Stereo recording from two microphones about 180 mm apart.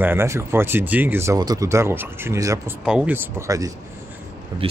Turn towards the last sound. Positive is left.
turn(degrees=-30)  # may be behind; listen again after turning